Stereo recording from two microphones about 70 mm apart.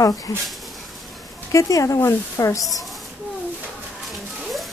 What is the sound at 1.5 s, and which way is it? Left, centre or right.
Speech, left.